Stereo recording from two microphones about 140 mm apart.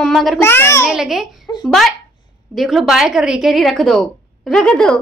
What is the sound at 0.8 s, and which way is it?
A woman's voice, 5° right (ahead or behind).